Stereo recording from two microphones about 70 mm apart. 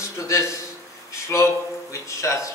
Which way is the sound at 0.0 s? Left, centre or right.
Left.